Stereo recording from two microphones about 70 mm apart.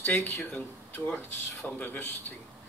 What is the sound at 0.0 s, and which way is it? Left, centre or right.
Speech, left.